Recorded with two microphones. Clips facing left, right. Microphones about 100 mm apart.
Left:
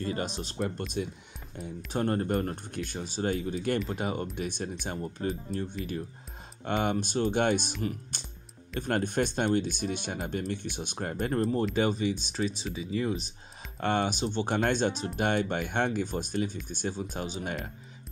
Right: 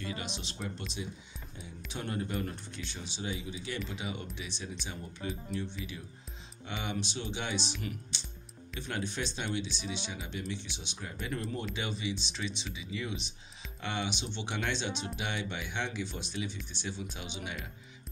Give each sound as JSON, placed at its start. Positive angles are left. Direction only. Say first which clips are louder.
{"t": 0.0, "sound": "speech", "louder": "left 7 dB", "side_deg": 45}
{"t": 0.6, "sound": "speech", "louder": "left 10 dB", "side_deg": 55}
{"t": 1.9, "sound": "speech", "louder": "left 8 dB", "side_deg": 50}
{"t": 7.8, "sound": "speech", "louder": "left 7 dB", "side_deg": 40}
{"t": 8.7, "sound": "speech", "louder": "left 9 dB", "side_deg": 50}